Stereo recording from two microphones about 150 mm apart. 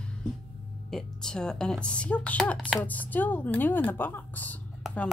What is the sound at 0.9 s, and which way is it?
Speech, 5° left (ahead or behind).